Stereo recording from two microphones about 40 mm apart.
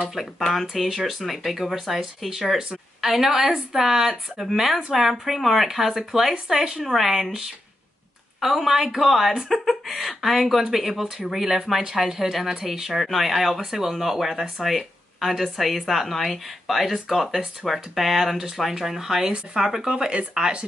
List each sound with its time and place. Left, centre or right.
0.1 s speech: centre; by 20.6 s right